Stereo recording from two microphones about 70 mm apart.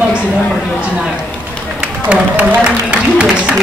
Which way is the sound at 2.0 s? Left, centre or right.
Centre.